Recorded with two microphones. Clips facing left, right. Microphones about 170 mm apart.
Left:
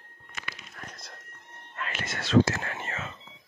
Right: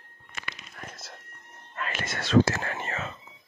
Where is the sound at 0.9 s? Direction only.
5° right (ahead or behind).